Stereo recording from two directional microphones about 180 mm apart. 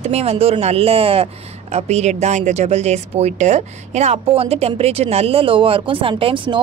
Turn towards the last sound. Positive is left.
turn(degrees=-25)  # may be behind; listen again after turning